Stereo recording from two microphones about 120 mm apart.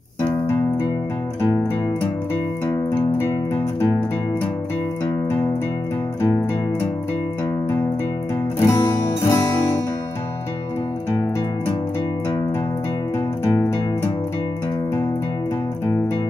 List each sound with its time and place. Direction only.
8.6 s music: 30° left (ahead or behind)